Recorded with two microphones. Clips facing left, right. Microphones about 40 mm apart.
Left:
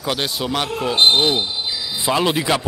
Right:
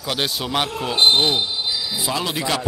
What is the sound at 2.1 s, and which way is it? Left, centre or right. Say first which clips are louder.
Speech: left 8 dB; left.